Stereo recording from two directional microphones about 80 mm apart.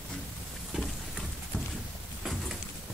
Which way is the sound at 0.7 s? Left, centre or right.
Centre.